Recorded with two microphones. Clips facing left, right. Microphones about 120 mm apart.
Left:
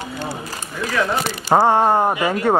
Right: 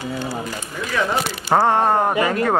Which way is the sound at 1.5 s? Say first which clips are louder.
Left 2 dB; 10° left (ahead or behind).